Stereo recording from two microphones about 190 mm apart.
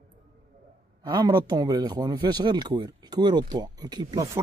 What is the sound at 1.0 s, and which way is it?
Speech, 20° right (ahead or behind).